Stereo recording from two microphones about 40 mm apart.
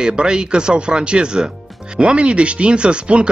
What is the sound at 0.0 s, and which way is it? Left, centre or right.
Speech, right.